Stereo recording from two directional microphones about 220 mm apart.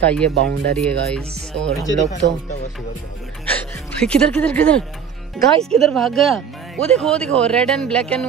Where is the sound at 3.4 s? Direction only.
5° left (ahead or behind).